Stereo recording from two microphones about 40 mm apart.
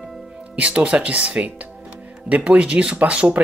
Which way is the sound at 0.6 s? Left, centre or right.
Right.